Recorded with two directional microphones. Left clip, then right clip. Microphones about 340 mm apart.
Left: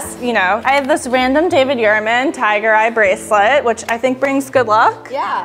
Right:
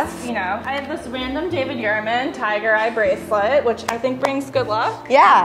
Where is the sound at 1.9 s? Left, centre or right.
Left.